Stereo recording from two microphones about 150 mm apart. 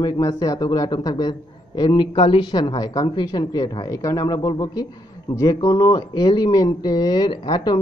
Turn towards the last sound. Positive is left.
turn(degrees=30)  # may be behind; listen again after turning